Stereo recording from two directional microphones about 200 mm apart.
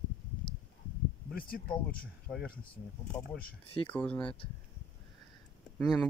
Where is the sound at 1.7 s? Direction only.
5° left (ahead or behind).